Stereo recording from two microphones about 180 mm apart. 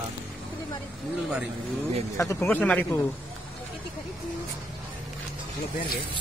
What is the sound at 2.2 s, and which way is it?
Speech, 15° left (ahead or behind).